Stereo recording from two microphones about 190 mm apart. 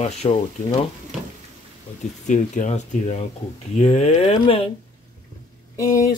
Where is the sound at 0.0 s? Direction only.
35° left (ahead or behind).